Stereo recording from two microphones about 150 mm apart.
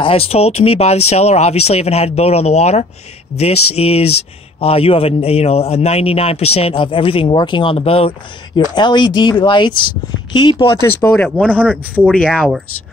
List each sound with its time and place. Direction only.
0.0 s a man's voice: 40° left (ahead or behind)
8.5 s a man's voice: 30° left (ahead or behind)
11.1 s speech: 5° left (ahead or behind)